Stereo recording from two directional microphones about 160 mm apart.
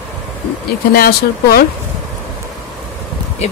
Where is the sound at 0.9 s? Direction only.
70° left (ahead or behind).